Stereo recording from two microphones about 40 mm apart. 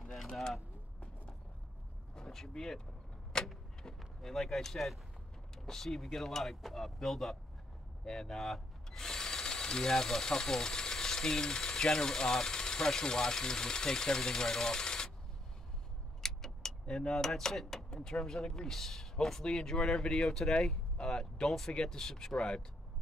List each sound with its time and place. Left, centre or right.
0.0 s a sound: centre
2.3 s speech: centre
3.3 s vehicle: left
4.2 s speech: centre
16.2 s keys jangling: centre
17.1 s speech: centre